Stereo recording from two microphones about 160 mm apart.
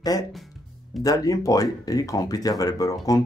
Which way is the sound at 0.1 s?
20° left (ahead or behind).